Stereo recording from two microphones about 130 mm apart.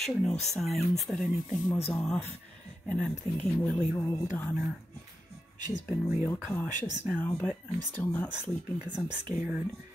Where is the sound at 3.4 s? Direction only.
10° left (ahead or behind).